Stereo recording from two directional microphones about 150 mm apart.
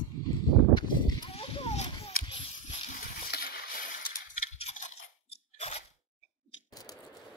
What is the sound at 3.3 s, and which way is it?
Vehicle, 90° left.